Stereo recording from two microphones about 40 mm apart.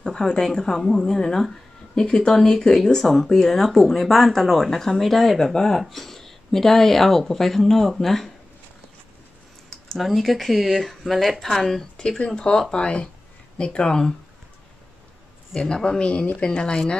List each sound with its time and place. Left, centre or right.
0.0 s speech: centre
5.8 s speech: centre
9.7 s a sound: centre
10.0 s speech: centre
12.3 s speech: centre
15.5 s speech: centre